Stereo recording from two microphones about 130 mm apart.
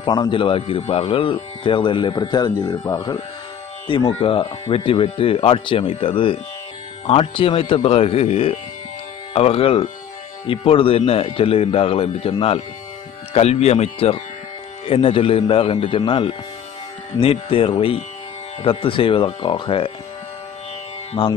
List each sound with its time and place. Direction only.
0.0 s speech: 35° left (ahead or behind)
4.0 s a man's voice: 40° left (ahead or behind)
21.2 s speech: 40° left (ahead or behind)